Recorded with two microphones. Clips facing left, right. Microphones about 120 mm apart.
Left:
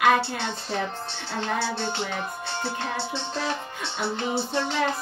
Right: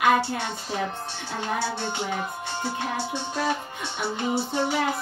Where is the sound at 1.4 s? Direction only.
10° right (ahead or behind).